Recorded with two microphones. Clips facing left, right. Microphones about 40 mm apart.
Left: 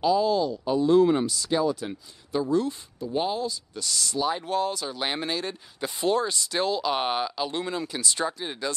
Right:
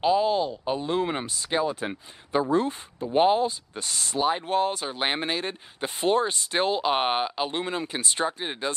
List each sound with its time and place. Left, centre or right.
0.0 s speech: right